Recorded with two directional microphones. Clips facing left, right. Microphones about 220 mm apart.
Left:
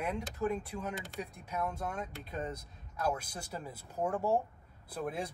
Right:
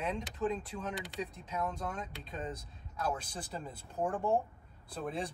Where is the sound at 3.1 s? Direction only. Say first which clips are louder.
Even; 10° left (ahead or behind).